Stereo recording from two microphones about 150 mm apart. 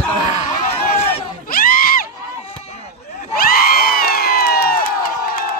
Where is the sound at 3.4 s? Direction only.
80° left.